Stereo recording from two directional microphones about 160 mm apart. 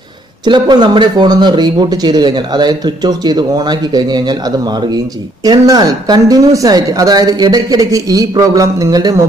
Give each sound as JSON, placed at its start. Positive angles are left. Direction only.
{"t": 0.5, "sound": "speech", "side_deg": -30}